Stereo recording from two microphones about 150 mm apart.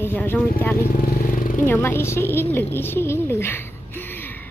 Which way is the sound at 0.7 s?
85° left.